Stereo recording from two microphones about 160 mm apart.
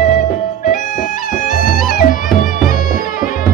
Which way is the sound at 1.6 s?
60° left (ahead or behind).